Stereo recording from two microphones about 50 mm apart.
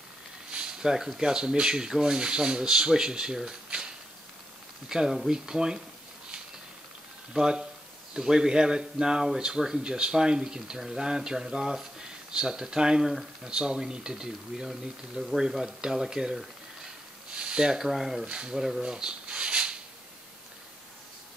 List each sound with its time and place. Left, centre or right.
0.5 s speech: centre
7.3 s speech: centre
13.5 s speech: centre
17.4 s speech: centre
18.2 s speech: centre
18.6 s a sound: centre